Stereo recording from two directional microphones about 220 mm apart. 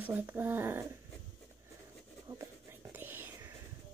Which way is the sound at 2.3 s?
10° right (ahead or behind).